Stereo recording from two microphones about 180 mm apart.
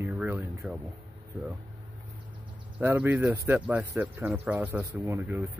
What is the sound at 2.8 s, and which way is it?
Speech, 10° right (ahead or behind).